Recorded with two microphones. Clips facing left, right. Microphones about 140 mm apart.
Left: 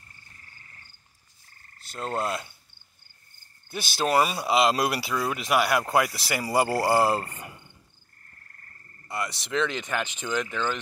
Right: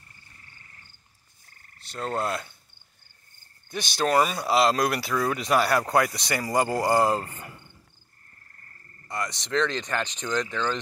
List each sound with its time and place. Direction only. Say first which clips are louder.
1.9 s frog: right 1 dB; centre (ahead or behind)
3.7 s speech: right 1 dB; 5° left (ahead or behind)
9.0 s speech: even; 10° left (ahead or behind)